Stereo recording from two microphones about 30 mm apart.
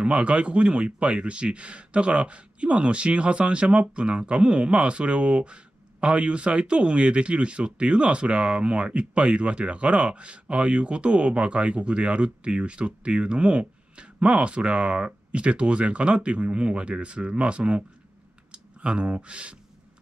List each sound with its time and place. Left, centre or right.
0.0 s speech: right